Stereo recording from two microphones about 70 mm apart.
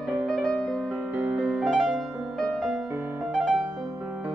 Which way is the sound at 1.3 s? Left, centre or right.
Centre.